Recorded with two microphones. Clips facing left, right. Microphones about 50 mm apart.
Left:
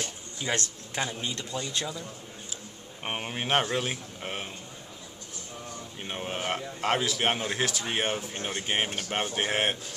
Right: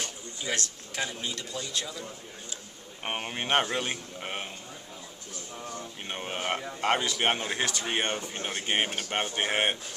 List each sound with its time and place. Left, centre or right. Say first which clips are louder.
0.6 s speech: left 1 dB; left
3.0 s speech: even; centre
6.0 s speech: left 1 dB; centre